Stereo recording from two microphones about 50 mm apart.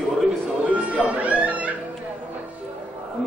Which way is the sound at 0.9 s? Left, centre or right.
Right.